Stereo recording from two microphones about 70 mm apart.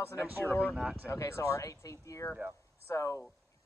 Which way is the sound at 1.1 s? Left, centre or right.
Left.